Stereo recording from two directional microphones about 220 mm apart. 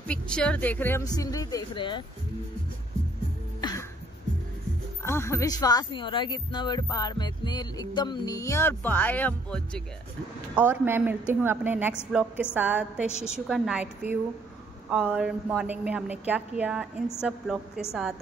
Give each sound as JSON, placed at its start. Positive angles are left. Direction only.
{"t": 0.1, "sound": "speech", "side_deg": 5}
{"t": 5.0, "sound": "speech", "side_deg": 10}
{"t": 10.5, "sound": "a woman's voice", "side_deg": -10}